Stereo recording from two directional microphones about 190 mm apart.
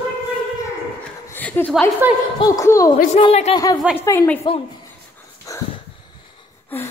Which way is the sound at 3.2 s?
35° left (ahead or behind).